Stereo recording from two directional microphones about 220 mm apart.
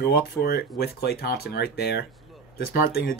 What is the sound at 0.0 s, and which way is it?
Speech, 45° left (ahead or behind).